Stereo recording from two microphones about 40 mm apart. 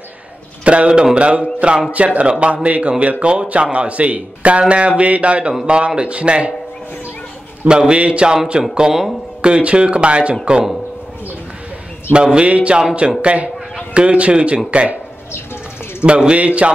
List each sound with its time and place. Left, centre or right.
0.7 s speech: right
7.6 s speech: right
12.1 s speech: right
16.0 s speech: right